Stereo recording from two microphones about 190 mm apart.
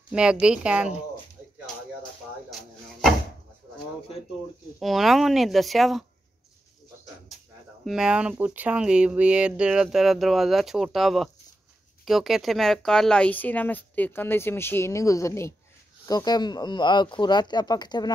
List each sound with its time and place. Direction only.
0.1 s speech: 5° right (ahead or behind)
2.5 s chopping: centre (ahead or behind)
4.7 s speech: centre (ahead or behind)
7.8 s speech: 5° right (ahead or behind); by 18.1 s 20° left (ahead or behind)